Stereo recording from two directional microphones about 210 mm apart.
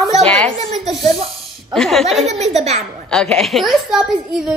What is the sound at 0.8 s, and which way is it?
Speech, 30° right (ahead or behind).